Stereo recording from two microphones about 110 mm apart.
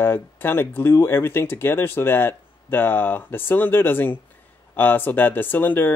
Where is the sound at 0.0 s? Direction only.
20° left (ahead or behind).